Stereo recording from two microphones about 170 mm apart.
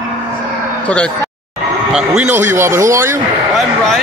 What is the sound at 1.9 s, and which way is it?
Speech, 5° right (ahead or behind).